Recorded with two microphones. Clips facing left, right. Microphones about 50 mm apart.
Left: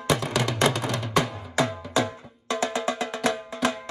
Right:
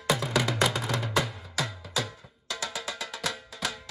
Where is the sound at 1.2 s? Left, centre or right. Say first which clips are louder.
Left 8 dB; left.